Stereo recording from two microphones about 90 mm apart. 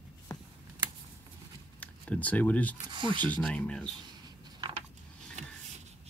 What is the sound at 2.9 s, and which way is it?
Speech, 60° right (ahead or behind).